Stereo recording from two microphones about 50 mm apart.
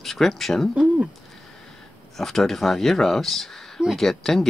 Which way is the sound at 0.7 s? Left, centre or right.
Right.